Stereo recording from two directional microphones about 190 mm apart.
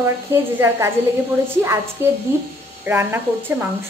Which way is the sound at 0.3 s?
15° right (ahead or behind).